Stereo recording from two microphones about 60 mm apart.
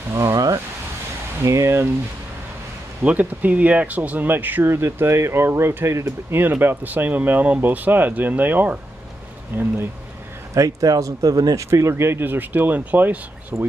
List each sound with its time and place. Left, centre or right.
0.2 s speech: right
1.4 s speech: right
3.0 s speech: right
4.6 s speech: right
6.4 s speech: right
10.5 s speech: right
11.7 s speech: right